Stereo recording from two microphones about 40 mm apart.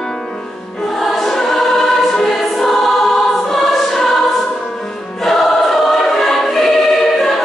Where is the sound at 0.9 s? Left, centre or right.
Centre.